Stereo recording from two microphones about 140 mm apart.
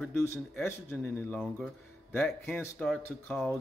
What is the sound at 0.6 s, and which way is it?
Speech, 15° left (ahead or behind).